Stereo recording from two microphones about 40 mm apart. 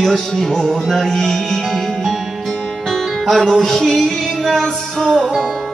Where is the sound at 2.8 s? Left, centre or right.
Centre.